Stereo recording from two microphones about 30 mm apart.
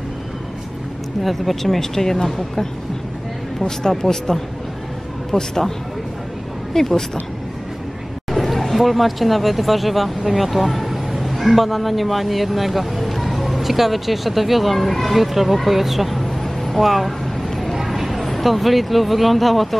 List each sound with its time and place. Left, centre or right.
1.2 s speech: centre
3.9 s speech: centre
6.7 s speech: centre
8.3 s speech: centre